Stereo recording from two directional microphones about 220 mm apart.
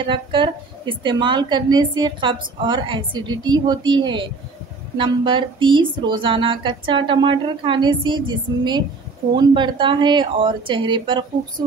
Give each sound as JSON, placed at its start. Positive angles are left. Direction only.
{"t": 0.0, "sound": "a woman's voice", "side_deg": -20}